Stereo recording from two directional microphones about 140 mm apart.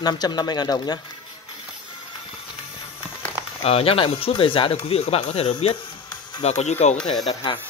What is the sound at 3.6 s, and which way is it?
Speech, 45° left (ahead or behind).